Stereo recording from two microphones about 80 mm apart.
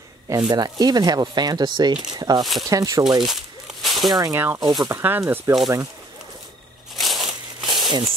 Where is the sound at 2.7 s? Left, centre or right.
Right.